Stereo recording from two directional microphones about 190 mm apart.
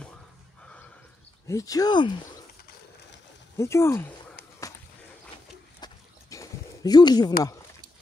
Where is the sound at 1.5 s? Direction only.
15° left (ahead or behind).